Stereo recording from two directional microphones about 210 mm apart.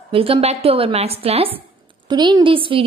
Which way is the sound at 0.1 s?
25° right (ahead or behind).